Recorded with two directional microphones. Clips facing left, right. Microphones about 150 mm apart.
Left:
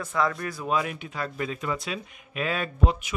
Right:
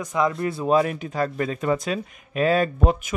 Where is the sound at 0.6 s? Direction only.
40° right (ahead or behind).